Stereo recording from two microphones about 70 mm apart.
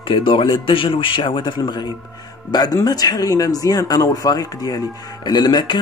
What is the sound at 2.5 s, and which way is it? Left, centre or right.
Speech, left.